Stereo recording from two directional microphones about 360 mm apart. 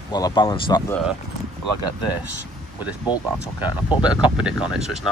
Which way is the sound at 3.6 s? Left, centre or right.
Centre.